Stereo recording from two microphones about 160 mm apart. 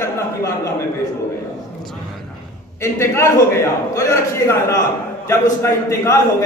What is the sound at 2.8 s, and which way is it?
A man's voice, 15° left (ahead or behind).